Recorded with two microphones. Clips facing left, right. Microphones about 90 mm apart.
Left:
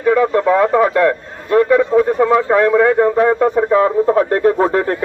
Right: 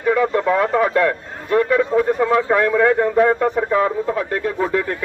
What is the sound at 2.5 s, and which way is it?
Speech, 10° left (ahead or behind).